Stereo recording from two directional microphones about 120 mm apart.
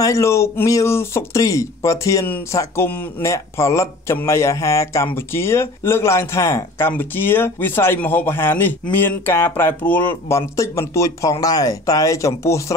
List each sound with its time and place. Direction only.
0.0 s speech: 25° left (ahead or behind)